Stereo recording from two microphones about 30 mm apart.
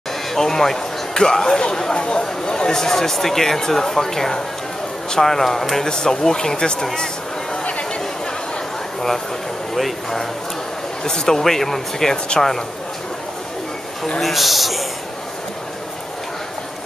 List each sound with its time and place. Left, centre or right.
0.3 s speech: centre
5.9 s speech: left
7.6 s a sound: left
11.1 s speech: left
14.2 s a man's voice: centre